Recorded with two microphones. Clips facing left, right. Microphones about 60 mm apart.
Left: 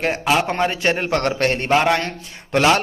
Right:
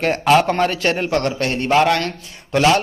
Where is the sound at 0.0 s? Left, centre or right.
Centre.